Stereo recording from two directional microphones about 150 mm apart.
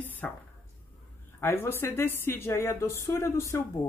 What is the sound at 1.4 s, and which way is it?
Speech, 15° left (ahead or behind).